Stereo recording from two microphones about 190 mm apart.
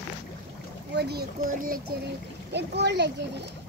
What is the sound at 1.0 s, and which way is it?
Speech, 55° right (ahead or behind).